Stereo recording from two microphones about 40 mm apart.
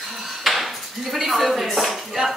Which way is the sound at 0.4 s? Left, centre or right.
Centre.